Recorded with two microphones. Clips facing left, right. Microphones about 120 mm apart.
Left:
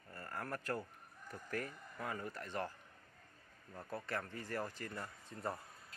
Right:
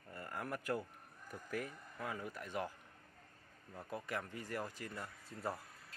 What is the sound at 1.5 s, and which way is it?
Speech, 5° right (ahead or behind).